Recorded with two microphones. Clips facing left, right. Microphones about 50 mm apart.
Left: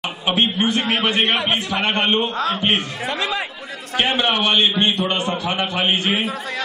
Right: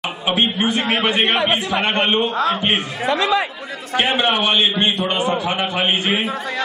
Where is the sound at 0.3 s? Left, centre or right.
Centre.